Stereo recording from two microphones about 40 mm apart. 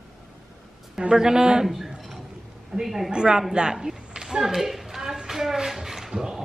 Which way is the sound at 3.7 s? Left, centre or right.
Centre.